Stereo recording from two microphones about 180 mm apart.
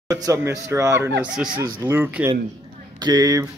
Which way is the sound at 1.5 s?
15° right (ahead or behind).